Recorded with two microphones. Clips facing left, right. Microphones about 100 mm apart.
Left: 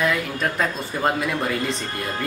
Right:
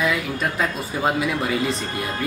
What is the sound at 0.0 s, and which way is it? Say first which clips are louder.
Speech: even; centre (ahead or behind).